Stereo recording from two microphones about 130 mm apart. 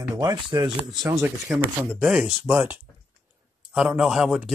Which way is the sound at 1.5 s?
5° right (ahead or behind).